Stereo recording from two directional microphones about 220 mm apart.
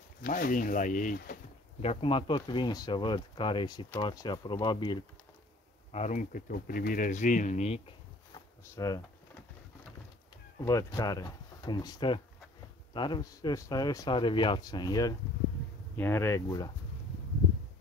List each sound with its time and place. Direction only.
0.2 s speech: 40° left (ahead or behind)
1.8 s speech: 25° left (ahead or behind)
5.9 s speech: 30° left (ahead or behind)
8.7 s typing: 15° left (ahead or behind)
10.6 s speech: 15° left (ahead or behind)